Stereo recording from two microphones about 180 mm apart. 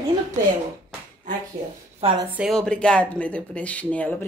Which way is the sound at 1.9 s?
30° right (ahead or behind).